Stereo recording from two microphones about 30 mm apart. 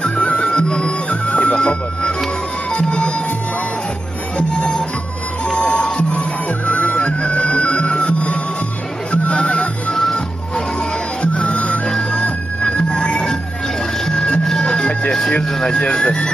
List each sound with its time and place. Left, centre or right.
0.1 s music: left
1.2 s music: left
1.5 s speech: left
2.7 s music: left
4.4 s music: left
12.0 s music: left
14.6 s music: left
15.4 s speech: centre
15.9 s speech: left